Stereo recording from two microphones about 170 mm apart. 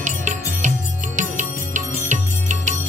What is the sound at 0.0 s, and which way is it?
Music, 45° right (ahead or behind).